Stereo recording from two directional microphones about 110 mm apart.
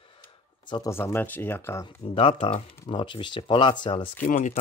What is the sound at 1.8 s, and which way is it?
Speech, 55° left (ahead or behind).